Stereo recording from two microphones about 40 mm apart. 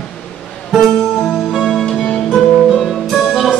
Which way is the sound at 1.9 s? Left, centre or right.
Left.